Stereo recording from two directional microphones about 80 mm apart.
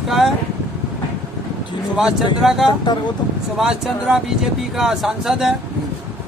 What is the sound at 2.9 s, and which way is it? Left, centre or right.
Speech, left.